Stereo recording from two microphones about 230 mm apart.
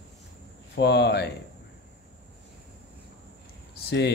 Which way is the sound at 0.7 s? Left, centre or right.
Left.